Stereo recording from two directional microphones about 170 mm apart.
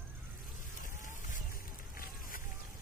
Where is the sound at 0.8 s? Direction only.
50° left (ahead or behind).